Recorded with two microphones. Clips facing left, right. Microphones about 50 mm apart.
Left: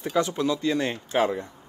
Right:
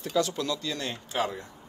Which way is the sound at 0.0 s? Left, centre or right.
Left.